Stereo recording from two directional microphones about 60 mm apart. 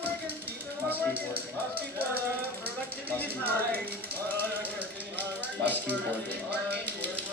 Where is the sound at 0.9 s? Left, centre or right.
Left.